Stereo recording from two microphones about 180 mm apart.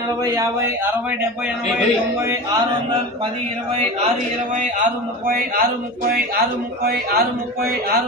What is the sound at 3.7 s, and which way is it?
A man's voice, 40° right (ahead or behind).